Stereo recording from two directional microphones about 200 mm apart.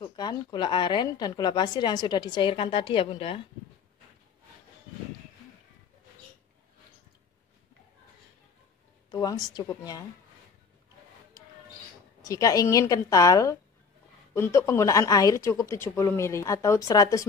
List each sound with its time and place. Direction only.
0.0 s a woman's voice: 20° left (ahead or behind)
9.1 s a woman's voice: 20° left (ahead or behind)
12.2 s speech: 15° left (ahead or behind)